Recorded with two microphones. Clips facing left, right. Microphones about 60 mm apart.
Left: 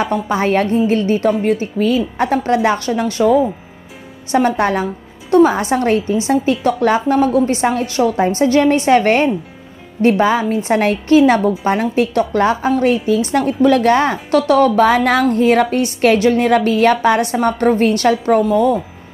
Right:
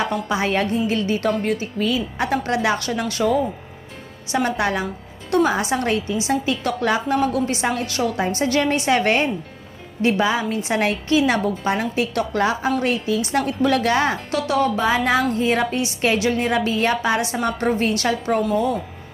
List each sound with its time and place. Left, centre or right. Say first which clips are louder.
0.0 s a woman's voice: left 5 dB; left
1.8 s a woman's voice: left 6 dB; left
4.3 s a woman's voice: left 6 dB; left
18.5 s speech: left 7 dB; left